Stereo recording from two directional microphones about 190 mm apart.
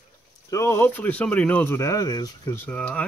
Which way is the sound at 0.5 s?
15° left (ahead or behind).